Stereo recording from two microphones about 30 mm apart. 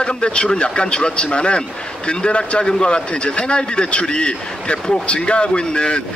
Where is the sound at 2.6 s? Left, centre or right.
Left.